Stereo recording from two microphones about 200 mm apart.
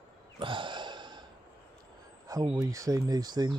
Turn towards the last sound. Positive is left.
turn(degrees=-20)  # may be behind; listen again after turning